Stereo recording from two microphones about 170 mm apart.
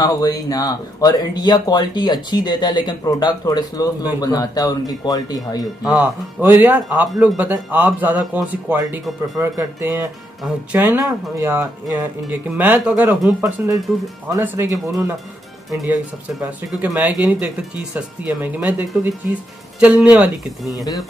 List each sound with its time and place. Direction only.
0.0 s speech: 20° left (ahead or behind)
5.9 s speech: 10° right (ahead or behind)
15.7 s speech: 5° right (ahead or behind)
20.7 s speech: 20° left (ahead or behind)